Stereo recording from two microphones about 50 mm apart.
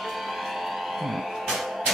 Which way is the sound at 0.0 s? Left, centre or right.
Centre.